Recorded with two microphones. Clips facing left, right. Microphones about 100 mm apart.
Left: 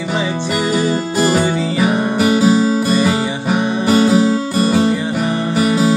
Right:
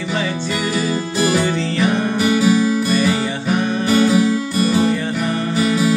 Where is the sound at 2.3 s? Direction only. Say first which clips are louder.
Left 2 dB; 30° left (ahead or behind).